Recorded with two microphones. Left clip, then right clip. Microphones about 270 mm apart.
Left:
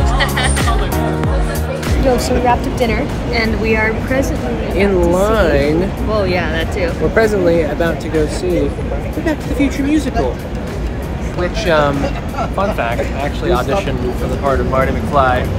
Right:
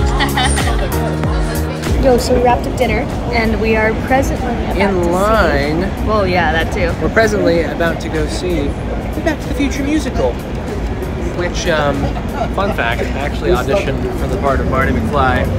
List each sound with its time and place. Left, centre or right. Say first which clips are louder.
2.0 s speech: right 2 dB; centre
5.1 s speech: even; centre
6.1 s speech: right 3 dB; centre
7.2 s speech: even; centre
9.2 s speech: left 1 dB; centre
11.6 s speech: left 2 dB; centre